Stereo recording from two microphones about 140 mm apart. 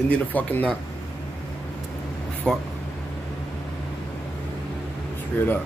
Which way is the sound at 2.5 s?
5° left (ahead or behind).